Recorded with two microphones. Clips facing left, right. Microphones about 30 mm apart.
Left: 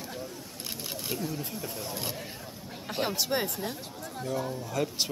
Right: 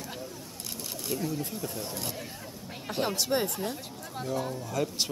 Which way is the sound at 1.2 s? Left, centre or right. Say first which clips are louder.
Right 2 dB; centre.